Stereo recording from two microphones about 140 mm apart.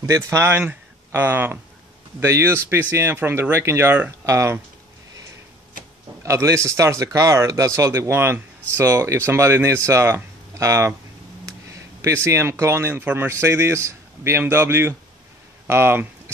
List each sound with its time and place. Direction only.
0.0 s speech: 20° right (ahead or behind)
6.2 s speech: 20° right (ahead or behind)